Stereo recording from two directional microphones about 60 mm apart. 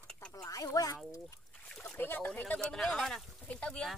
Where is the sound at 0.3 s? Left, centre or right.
Left.